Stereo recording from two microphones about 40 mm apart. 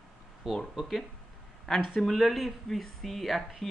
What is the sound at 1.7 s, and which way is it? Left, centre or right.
Speech, centre.